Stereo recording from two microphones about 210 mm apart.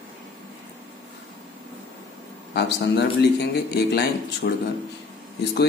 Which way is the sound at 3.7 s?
50° left (ahead or behind).